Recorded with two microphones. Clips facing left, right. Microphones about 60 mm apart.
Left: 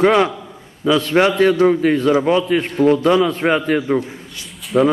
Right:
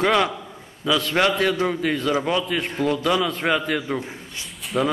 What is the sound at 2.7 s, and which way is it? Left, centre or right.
Speech, left.